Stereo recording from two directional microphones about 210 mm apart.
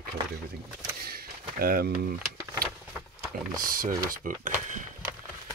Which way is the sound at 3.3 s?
40° right (ahead or behind).